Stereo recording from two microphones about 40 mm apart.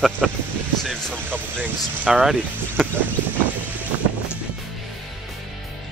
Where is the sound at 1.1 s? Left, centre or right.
Left.